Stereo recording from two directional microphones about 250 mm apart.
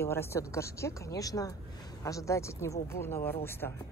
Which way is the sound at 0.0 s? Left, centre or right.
Centre.